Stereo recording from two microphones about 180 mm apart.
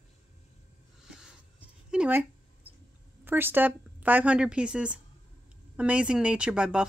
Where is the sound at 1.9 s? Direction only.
5° right (ahead or behind).